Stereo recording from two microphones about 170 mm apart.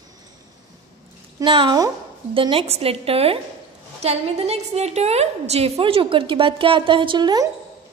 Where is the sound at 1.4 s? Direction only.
30° right (ahead or behind).